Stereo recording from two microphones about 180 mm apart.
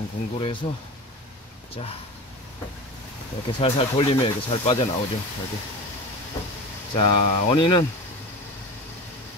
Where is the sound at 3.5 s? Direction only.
30° left (ahead or behind).